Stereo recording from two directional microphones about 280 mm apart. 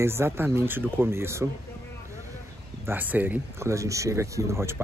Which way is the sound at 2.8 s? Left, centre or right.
Centre.